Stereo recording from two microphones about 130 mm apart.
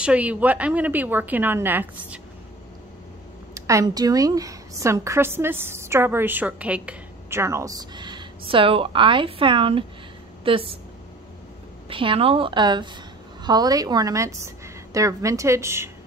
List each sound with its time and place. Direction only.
0.0 s a woman's voice: 10° right (ahead or behind)
3.5 s a woman's voice: 25° right (ahead or behind)
7.2 s a woman's voice: 20° right (ahead or behind); by 10.8 s 45° right (ahead or behind)
11.9 s a woman's voice: 40° right (ahead or behind); by 15.9 s 20° right (ahead or behind)